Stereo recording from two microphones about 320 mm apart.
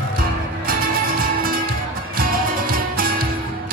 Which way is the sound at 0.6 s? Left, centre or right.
Right.